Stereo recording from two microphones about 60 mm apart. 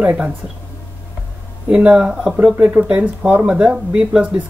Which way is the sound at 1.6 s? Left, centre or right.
Centre.